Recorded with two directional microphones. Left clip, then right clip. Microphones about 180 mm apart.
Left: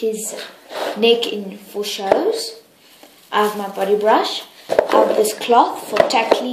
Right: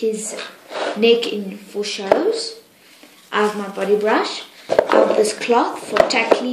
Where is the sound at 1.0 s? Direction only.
10° right (ahead or behind).